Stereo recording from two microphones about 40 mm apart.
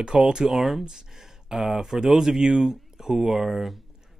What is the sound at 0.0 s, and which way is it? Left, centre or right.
Speech, centre.